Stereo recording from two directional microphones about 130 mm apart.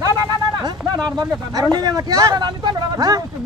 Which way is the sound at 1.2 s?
30° right (ahead or behind).